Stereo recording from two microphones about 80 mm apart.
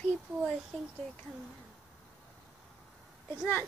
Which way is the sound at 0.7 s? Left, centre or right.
Centre.